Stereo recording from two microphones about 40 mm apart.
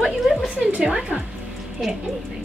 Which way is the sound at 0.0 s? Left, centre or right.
Centre.